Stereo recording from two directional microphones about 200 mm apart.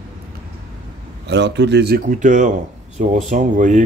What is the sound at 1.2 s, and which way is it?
Speech, 60° right (ahead or behind).